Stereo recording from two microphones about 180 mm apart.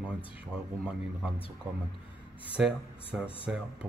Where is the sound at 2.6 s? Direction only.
5° right (ahead or behind).